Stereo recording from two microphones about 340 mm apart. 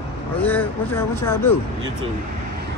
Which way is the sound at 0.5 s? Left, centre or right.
Centre.